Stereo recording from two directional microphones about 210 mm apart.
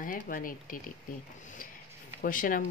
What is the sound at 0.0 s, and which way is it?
Speech, 40° left (ahead or behind).